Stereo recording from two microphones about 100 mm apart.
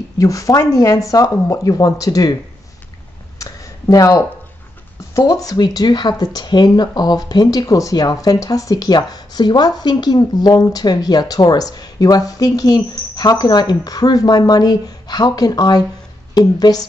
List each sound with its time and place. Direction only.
0.2 s speech: 35° left (ahead or behind)
3.3 s a sound: 35° left (ahead or behind)
5.1 s speech: 35° left (ahead or behind)